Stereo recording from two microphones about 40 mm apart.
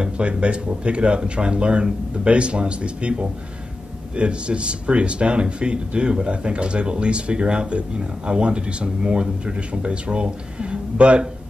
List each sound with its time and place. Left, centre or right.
0.0 s speech: right